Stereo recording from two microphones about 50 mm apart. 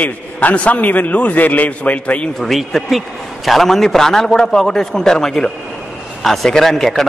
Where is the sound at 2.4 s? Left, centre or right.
Centre.